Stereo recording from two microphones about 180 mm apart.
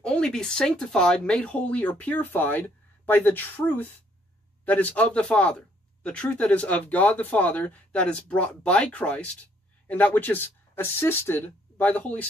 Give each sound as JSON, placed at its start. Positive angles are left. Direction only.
{"t": 0.0, "sound": "speech", "side_deg": 5}